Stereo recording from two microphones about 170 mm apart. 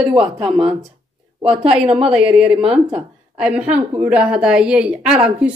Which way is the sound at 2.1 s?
5° right (ahead or behind).